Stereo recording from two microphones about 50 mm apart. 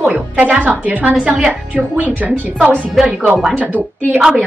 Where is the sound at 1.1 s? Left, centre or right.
Centre.